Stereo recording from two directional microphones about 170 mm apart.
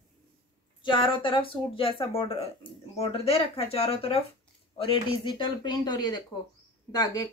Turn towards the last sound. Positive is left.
turn(degrees=20)  # may be behind; listen again after turning